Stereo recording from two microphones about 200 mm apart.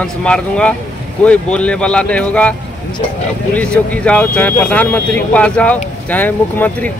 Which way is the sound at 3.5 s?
5° left (ahead or behind).